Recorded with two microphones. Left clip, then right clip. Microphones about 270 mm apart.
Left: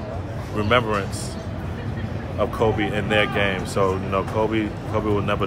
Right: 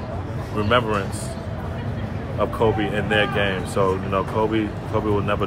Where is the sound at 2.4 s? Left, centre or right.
Centre.